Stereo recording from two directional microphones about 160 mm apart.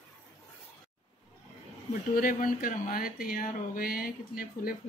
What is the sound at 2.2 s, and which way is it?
Speech, 60° left (ahead or behind).